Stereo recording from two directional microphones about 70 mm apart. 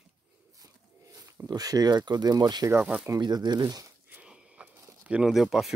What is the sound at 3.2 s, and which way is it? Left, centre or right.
Speech, right.